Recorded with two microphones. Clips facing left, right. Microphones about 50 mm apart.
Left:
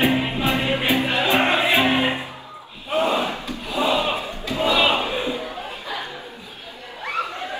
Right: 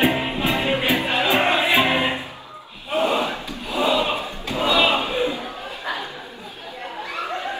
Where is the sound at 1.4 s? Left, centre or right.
Left.